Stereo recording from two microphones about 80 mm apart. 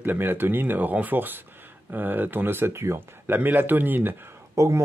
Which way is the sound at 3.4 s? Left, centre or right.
Right.